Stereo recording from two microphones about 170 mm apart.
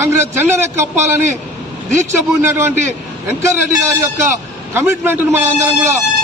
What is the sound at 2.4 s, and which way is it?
A man's voice, 15° right (ahead or behind).